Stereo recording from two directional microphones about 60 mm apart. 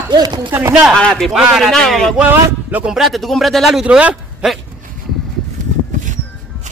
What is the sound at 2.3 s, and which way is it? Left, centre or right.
Speech, right.